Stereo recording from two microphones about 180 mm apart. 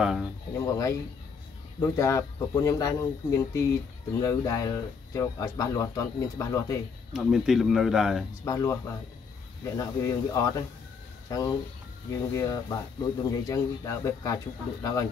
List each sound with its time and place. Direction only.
0.0 s speech: centre (ahead or behind)
0.6 s speech: 15° left (ahead or behind)
7.1 s speech: centre (ahead or behind)
8.5 s speech: 15° left (ahead or behind)